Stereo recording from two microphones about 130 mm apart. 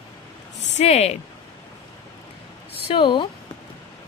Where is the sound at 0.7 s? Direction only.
55° left (ahead or behind).